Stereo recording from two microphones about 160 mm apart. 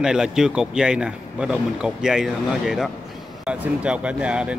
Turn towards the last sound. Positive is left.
turn(degrees=-5)  # may be behind; listen again after turning